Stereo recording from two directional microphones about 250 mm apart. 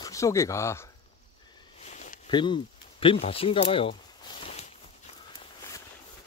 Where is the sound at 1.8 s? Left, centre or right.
Left.